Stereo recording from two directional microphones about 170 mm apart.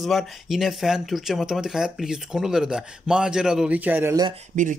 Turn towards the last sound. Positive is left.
turn(degrees=-50)  # may be behind; listen again after turning